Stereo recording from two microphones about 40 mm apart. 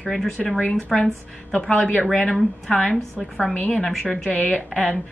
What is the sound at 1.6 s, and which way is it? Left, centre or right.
Speech, left.